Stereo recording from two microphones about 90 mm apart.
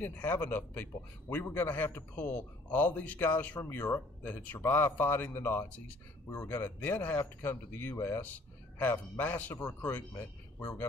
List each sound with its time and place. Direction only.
0.0 s a man's voice: 20° left (ahead or behind)